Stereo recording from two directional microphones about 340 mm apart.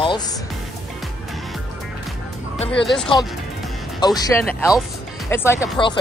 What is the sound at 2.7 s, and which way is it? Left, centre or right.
Speech, centre.